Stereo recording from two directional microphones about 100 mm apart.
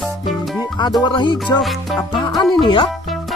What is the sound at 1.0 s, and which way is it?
Music, 50° left (ahead or behind).